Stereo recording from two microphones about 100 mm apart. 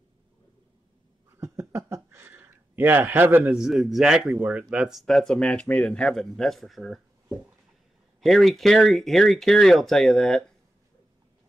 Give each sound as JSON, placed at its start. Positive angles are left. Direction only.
{"t": 1.4, "sound": "speech", "side_deg": -30}
{"t": 3.5, "sound": "speech", "side_deg": -5}
{"t": 8.2, "sound": "speech", "side_deg": 0}